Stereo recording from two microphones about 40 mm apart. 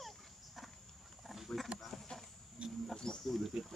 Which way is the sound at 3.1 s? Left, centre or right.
Centre.